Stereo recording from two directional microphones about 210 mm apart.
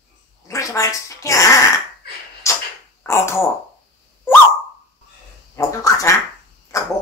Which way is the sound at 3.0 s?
15° left (ahead or behind).